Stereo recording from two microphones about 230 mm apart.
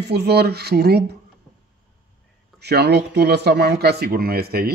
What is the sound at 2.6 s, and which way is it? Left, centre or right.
Speech, right.